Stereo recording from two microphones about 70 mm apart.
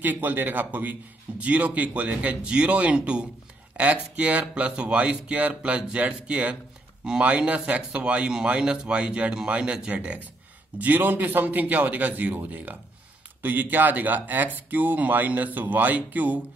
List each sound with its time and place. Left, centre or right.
0.0 s a man's voice: right